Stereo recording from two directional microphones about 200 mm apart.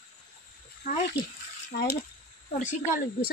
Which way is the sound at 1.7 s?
50° left (ahead or behind).